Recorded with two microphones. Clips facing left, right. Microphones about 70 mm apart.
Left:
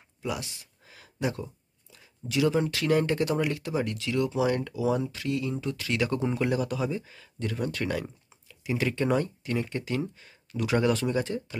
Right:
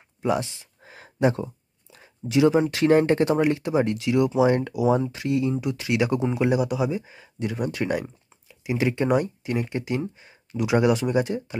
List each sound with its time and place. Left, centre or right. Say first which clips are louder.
0.2 s a sound: right 9 dB; right
2.2 s speech: right 6 dB; right
6.1 s speech: right 5 dB; centre